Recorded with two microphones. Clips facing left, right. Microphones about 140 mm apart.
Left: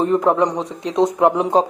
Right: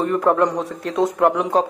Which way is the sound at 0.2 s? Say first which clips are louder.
Even; 10° left (ahead or behind).